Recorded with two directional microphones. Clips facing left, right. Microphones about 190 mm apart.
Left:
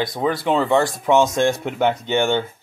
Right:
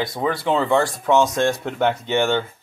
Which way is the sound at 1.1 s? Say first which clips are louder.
Left 1 dB; 20° left (ahead or behind).